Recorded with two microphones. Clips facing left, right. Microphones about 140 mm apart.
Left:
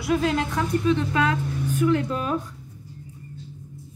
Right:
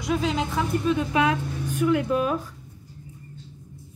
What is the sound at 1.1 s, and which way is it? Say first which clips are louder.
Speech: right 1 dB; 15° right (ahead or behind).